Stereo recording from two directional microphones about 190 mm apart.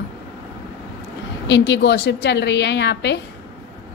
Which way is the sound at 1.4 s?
70° left (ahead or behind).